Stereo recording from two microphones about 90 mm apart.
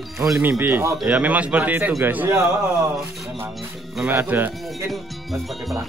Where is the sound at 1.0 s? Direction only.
15° right (ahead or behind).